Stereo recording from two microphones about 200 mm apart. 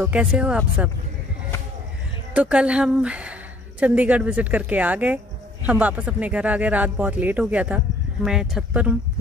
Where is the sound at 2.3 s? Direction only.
5° right (ahead or behind).